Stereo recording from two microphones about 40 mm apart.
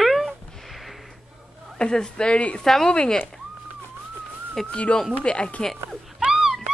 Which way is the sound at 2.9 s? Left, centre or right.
Left.